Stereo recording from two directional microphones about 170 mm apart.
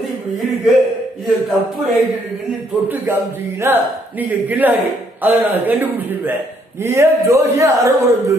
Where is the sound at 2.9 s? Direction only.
15° right (ahead or behind).